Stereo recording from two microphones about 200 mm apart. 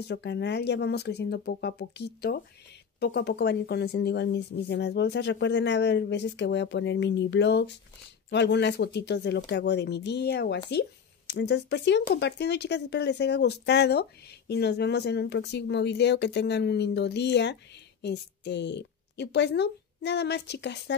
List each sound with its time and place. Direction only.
0.0 s a woman's voice: 60° left (ahead or behind)